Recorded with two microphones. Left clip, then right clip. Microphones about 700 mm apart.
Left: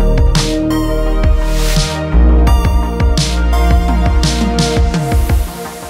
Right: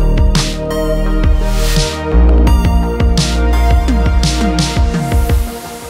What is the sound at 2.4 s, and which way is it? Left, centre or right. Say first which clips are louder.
Music: right 1 dB; centre.